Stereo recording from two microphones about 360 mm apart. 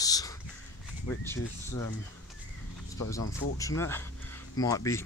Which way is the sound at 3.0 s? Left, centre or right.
Centre.